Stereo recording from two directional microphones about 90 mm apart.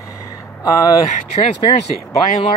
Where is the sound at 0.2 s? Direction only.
40° left (ahead or behind).